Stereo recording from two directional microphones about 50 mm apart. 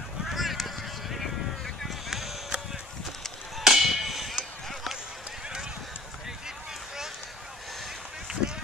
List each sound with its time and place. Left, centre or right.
0.2 s honk: centre
1.9 s a sound: centre
8.3 s run: centre